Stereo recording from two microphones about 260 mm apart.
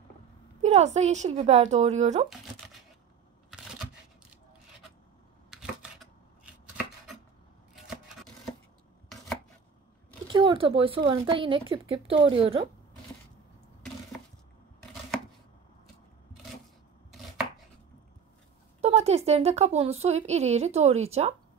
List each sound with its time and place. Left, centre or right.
0.6 s speech: right
5.5 s chopping: centre
10.3 s a sound: centre
11.1 s speech: centre
18.8 s a woman's voice: right